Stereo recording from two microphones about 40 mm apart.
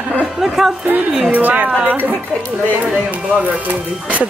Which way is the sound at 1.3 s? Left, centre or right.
Right.